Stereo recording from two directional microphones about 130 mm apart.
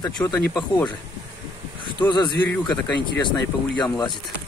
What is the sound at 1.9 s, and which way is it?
Speech, 35° left (ahead or behind).